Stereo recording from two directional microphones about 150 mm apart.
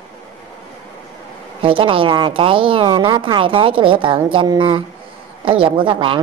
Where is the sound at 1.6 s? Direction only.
35° right (ahead or behind).